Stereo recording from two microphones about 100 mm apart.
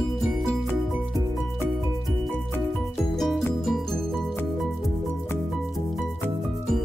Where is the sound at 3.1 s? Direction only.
Centre (ahead or behind).